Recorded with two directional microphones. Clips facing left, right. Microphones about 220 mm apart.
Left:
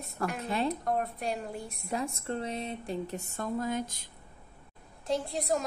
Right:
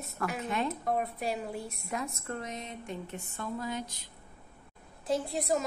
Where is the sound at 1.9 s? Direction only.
30° left (ahead or behind); by 3.9 s 50° left (ahead or behind).